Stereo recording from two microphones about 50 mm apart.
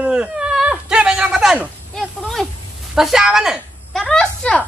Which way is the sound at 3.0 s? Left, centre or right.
Centre.